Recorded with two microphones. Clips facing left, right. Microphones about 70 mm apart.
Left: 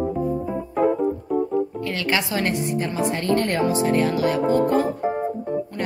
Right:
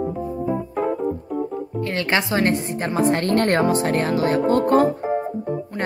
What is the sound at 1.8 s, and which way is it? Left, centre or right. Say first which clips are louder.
A woman's voice: right 2 dB; right.